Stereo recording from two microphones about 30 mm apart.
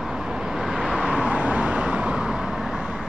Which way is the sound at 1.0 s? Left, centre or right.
Right.